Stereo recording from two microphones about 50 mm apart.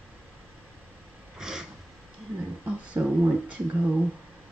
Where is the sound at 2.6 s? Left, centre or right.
Right.